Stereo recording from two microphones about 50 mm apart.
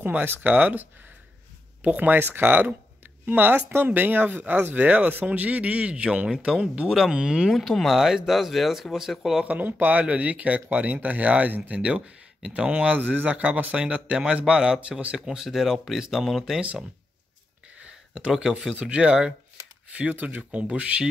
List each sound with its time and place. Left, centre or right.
0.0 s speech: right
2.1 s speech: right; by 7.5 s centre
7.5 s speech: centre
7.9 s speech: centre
9.6 s speech: right
15.1 s speech: centre
18.3 s speech: centre
20.2 s speech: right